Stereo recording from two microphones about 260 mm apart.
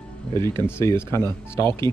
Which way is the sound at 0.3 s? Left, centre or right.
Centre.